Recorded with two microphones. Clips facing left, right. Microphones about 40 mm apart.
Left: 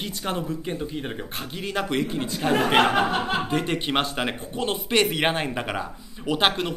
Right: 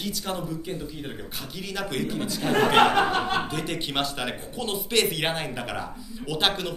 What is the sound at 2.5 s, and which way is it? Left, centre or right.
Speech, centre.